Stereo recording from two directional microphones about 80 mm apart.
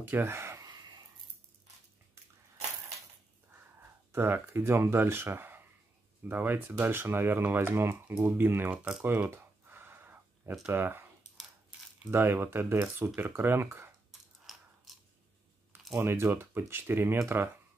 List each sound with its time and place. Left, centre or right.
0.0 s speech: right
0.7 s a sound: right
4.1 s speech: right
8.7 s speech: centre
9.3 s a sound: right
10.7 s speech: right
12.1 s speech: right
14.1 s mechanisms: centre
16.0 s speech: right